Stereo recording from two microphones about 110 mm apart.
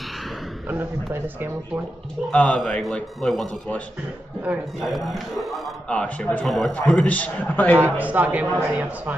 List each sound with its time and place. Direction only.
0.7 s speech: 20° right (ahead or behind)
2.3 s a man's voice: 10° left (ahead or behind)
4.7 s a man's voice: centre (ahead or behind)
5.9 s a man's voice: 10° left (ahead or behind)
6.4 s a man's voice: centre (ahead or behind)
7.8 s speech: 15° right (ahead or behind)